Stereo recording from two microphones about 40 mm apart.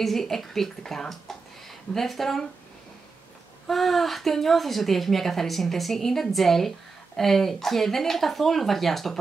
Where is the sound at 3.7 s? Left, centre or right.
Centre.